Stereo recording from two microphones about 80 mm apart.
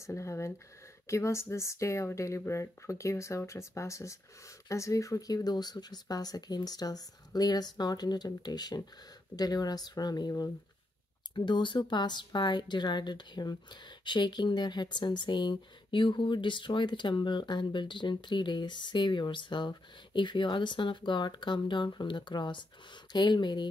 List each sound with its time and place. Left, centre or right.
0.0 s speech: left
11.3 s speech: left